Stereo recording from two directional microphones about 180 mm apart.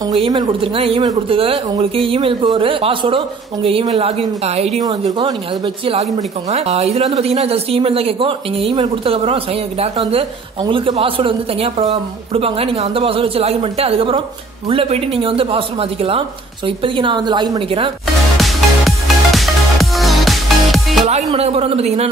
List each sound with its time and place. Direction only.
0.1 s a woman's voice: 25° right (ahead or behind)
5.9 s a woman's voice: 35° right (ahead or behind)
18.4 s music: centre (ahead or behind)
21.3 s a woman's voice: 35° right (ahead or behind)